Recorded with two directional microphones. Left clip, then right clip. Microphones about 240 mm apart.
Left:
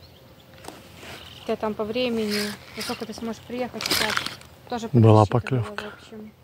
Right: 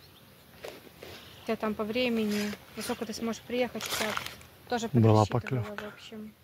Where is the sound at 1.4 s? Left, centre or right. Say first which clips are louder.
Left 5 dB; right.